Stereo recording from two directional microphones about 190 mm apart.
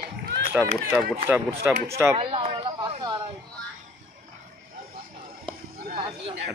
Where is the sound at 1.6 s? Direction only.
15° right (ahead or behind).